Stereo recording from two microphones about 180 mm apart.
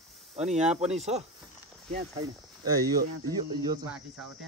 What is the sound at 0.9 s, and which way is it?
Speech, 35° right (ahead or behind).